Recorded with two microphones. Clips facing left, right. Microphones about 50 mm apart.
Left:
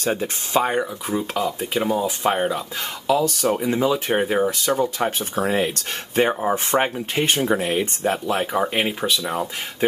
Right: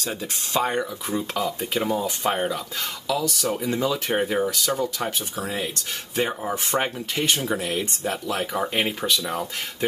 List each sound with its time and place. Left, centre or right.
0.0 s speech: left
0.6 s speech: centre